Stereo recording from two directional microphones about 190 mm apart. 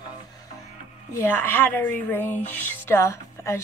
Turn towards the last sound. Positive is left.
turn(degrees=15)  # may be behind; listen again after turning